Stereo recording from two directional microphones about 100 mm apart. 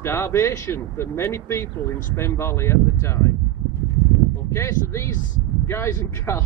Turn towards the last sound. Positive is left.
turn(degrees=25)  # may be behind; listen again after turning